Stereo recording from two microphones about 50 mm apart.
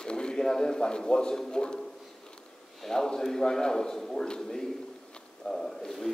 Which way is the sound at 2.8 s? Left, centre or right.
Centre.